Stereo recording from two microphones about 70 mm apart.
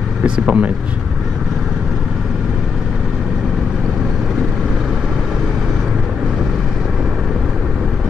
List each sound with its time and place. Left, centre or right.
0.2 s speech: centre